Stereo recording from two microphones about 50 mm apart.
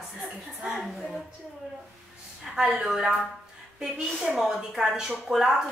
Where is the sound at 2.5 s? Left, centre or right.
Centre.